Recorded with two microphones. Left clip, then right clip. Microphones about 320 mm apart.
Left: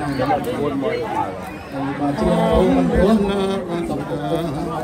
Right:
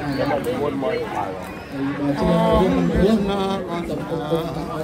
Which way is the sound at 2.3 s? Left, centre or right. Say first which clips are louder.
Left 2 dB; centre.